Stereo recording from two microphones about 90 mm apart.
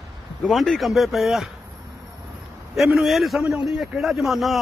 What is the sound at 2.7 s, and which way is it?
A man's voice, centre (ahead or behind).